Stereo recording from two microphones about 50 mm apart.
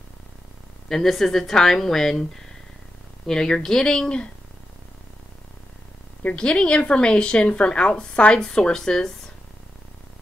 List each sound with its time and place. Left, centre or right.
0.8 s a woman's voice: centre
3.3 s a woman's voice: centre
6.3 s a woman's voice: centre